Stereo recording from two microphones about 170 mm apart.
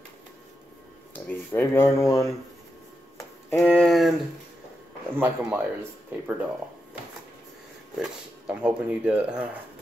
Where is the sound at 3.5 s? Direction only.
Centre (ahead or behind).